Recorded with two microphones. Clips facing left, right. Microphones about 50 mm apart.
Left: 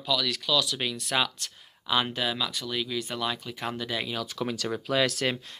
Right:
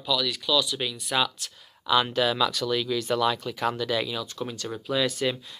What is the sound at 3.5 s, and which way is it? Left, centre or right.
Speech, left.